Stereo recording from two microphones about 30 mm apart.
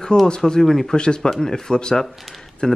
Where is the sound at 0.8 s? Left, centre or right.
Left.